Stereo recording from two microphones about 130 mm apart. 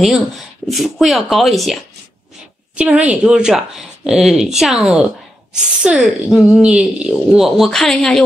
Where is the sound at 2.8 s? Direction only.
10° right (ahead or behind).